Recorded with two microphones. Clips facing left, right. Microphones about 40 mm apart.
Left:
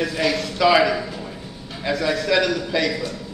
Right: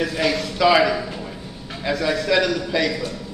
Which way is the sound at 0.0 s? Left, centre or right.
Centre.